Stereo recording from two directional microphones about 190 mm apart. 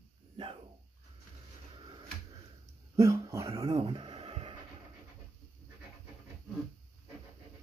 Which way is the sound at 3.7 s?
30° right (ahead or behind).